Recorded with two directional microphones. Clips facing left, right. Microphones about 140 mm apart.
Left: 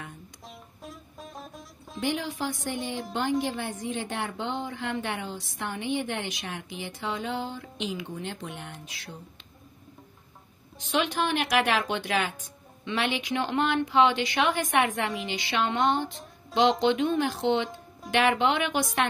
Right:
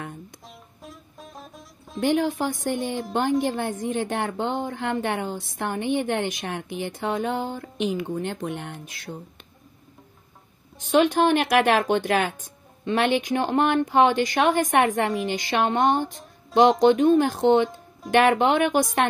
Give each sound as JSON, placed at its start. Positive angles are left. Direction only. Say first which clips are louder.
{"t": 0.5, "sound": "music", "louder": "even", "side_deg": 0}
{"t": 2.0, "sound": "speech", "louder": "right 8 dB", "side_deg": -50}
{"t": 10.8, "sound": "speech", "louder": "right 8 dB", "side_deg": -45}